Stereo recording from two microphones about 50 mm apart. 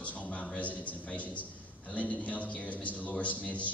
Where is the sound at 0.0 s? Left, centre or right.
Left.